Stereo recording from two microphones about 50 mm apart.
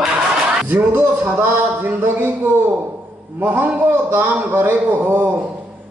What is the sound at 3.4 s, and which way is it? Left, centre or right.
A man's voice, right.